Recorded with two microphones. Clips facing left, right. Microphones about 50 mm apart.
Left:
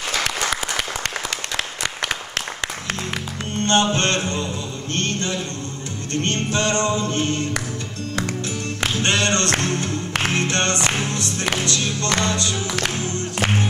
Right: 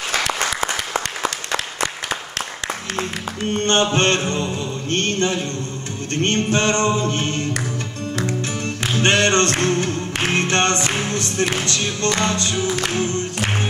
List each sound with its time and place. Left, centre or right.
0.9 s applause: right
3.5 s music: right
9.0 s music: right